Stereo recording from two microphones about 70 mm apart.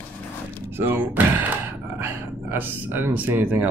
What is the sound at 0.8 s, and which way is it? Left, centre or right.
Speech, right.